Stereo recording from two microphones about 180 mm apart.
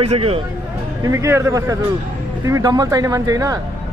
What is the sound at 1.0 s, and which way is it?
Speech, 15° right (ahead or behind).